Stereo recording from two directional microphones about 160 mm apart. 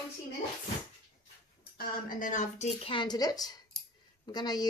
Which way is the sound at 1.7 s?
55° left (ahead or behind).